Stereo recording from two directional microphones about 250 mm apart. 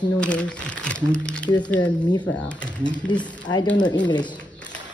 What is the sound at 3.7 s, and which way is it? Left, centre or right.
Speech, centre.